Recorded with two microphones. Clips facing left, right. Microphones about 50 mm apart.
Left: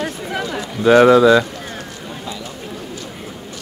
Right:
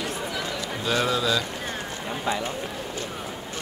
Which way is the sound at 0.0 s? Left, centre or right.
Left.